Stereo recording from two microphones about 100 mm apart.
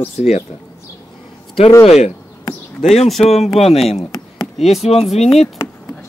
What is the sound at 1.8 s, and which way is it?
Speech, 90° left.